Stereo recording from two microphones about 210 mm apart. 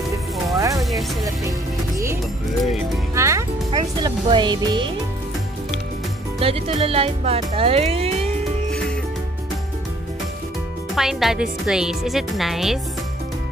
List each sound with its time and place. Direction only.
0.6 s music: 15° right (ahead or behind)
3.2 s music: 15° right (ahead or behind)
6.4 s speech: 30° right (ahead or behind)
11.0 s speech: centre (ahead or behind)